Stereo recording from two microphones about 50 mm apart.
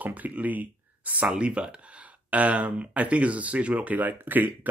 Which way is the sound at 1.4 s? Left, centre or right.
Right.